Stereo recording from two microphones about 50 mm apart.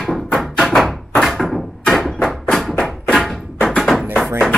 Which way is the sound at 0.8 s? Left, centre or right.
Centre.